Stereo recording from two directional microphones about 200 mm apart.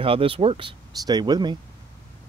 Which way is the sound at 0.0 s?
25° right (ahead or behind).